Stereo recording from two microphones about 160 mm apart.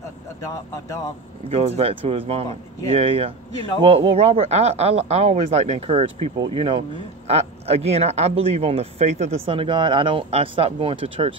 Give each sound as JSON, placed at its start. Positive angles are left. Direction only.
{"t": 0.5, "sound": "speech", "side_deg": 20}
{"t": 1.5, "sound": "speech", "side_deg": -40}